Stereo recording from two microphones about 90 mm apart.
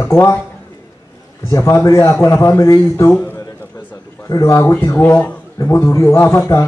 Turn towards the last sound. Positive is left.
turn(degrees=30)  # may be behind; listen again after turning